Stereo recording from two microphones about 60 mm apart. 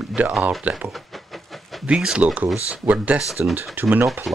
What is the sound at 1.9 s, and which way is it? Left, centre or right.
Speech, centre.